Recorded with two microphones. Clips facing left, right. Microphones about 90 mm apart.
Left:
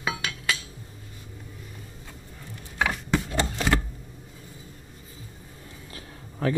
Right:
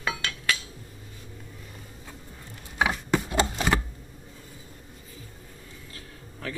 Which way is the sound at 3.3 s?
15° right (ahead or behind).